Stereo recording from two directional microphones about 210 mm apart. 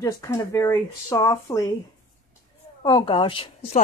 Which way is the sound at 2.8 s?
25° left (ahead or behind).